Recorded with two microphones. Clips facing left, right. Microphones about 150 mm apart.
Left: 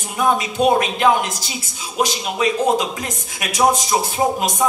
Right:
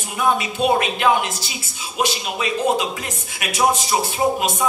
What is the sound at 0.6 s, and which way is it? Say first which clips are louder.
Speech: left 2 dB; 40° left (ahead or behind).